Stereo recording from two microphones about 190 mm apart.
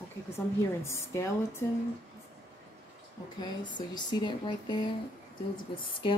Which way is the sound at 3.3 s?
20° left (ahead or behind).